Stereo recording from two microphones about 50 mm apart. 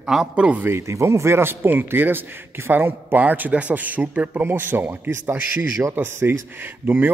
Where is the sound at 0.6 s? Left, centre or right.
Right.